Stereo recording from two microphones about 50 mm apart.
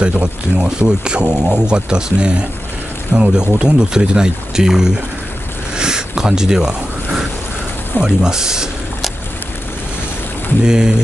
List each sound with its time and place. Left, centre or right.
0.0 s speech: centre
5.8 s a sound: centre
8.0 s speech: centre
10.6 s speech: centre